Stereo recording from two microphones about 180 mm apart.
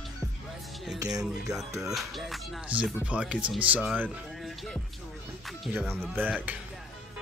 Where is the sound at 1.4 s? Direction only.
20° right (ahead or behind).